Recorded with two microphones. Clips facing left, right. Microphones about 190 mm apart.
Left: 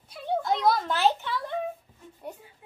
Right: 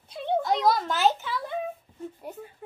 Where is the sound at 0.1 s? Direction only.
20° right (ahead or behind).